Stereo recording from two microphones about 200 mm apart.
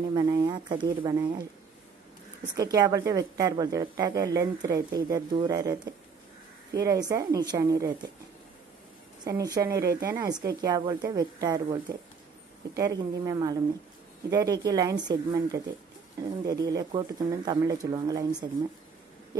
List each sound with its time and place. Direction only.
0.1 s speech: 20° right (ahead or behind)
2.5 s a woman's voice: 20° right (ahead or behind)
9.2 s a woman's voice: 20° right (ahead or behind)